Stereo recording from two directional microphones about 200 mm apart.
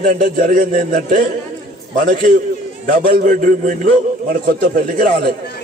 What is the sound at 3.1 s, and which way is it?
A man's voice, 40° right (ahead or behind).